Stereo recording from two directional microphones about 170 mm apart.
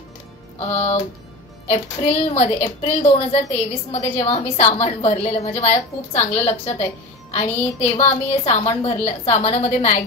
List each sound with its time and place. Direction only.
0.6 s music: 40° left (ahead or behind)
1.7 s a woman's voice: 40° left (ahead or behind)